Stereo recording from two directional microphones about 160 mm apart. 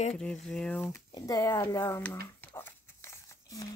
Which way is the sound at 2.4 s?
15° left (ahead or behind).